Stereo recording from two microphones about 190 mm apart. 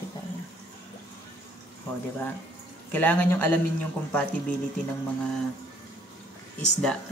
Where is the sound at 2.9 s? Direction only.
10° left (ahead or behind).